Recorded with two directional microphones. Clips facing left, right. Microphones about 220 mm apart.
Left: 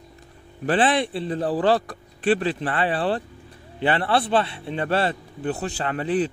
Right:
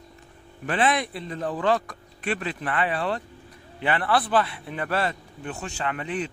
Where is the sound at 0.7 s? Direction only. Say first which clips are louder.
Left 4 dB; 30° left (ahead or behind).